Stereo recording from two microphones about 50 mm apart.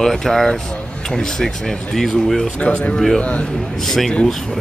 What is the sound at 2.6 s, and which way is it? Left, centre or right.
Speech, left.